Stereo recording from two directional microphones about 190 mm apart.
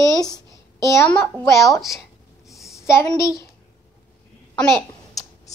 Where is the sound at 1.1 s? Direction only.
10° left (ahead or behind).